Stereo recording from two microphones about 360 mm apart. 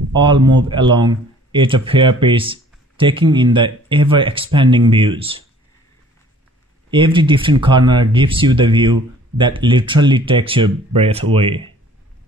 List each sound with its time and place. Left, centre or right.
0.1 s speech: centre
6.9 s speech: centre